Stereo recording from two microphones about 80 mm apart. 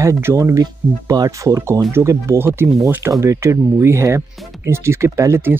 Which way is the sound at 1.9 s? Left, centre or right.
Right.